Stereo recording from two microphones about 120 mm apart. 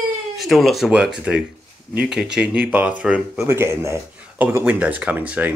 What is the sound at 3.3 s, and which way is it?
Speech, 20° right (ahead or behind).